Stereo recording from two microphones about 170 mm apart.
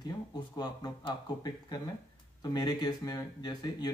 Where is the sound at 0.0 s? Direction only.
25° left (ahead or behind).